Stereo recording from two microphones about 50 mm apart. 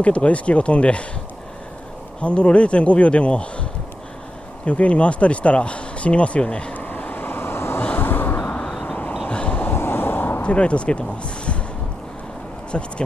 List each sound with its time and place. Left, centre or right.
0.0 s speech: left
2.2 s speech: left
4.6 s speech: left
6.7 s vehicle: left
9.3 s vehicle: left
9.7 s vehicle: left
10.4 s speech: left
12.7 s speech: centre